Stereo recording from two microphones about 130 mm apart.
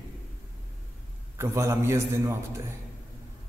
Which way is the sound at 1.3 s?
20° right (ahead or behind).